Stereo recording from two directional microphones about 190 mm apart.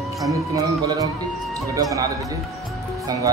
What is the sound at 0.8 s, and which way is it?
Speech, 20° right (ahead or behind).